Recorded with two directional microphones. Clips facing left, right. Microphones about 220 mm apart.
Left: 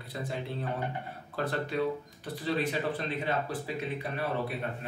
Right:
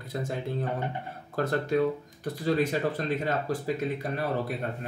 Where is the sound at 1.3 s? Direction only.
45° right (ahead or behind).